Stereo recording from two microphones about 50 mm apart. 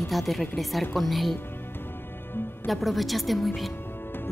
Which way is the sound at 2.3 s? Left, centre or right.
Left.